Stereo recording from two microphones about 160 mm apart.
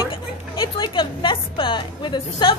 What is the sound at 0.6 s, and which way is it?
Speech, 30° left (ahead or behind).